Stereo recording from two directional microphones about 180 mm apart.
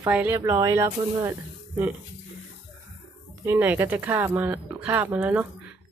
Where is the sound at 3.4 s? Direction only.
10° right (ahead or behind).